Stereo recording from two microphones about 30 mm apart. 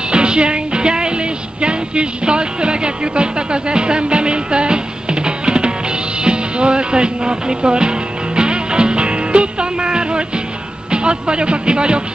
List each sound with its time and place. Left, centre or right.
0.1 s music: right
10.9 s speech: right